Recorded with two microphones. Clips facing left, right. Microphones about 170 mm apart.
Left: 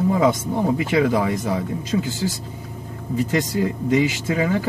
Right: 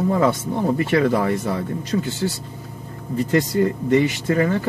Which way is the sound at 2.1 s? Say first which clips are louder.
Right 1 dB; 90° left.